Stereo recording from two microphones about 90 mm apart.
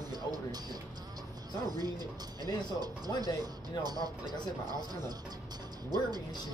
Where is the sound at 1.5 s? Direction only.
50° right (ahead or behind).